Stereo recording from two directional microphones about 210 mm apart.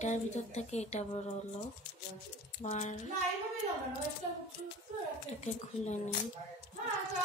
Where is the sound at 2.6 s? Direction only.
35° left (ahead or behind).